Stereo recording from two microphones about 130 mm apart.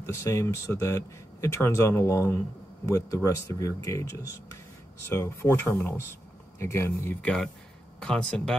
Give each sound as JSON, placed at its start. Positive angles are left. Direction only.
{"t": 0.0, "sound": "speech", "side_deg": 20}
{"t": 7.2, "sound": "speech", "side_deg": 5}